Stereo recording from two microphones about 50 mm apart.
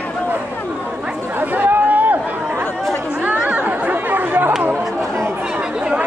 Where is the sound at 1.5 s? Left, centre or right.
Right.